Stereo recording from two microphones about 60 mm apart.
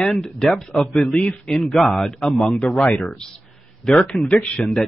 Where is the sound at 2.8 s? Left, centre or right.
Centre.